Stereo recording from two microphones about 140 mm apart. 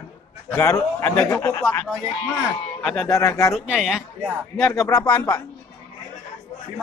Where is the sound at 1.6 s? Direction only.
10° left (ahead or behind).